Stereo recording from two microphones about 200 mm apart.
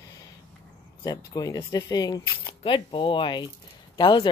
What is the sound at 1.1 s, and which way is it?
Speech, 20° left (ahead or behind).